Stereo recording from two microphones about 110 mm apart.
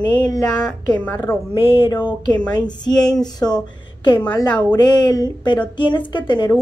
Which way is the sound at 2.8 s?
35° left (ahead or behind).